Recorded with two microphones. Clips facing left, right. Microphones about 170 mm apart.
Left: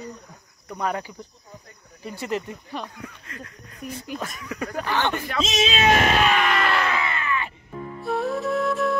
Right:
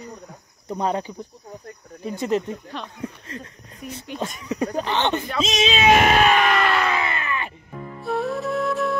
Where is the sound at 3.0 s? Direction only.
30° right (ahead or behind).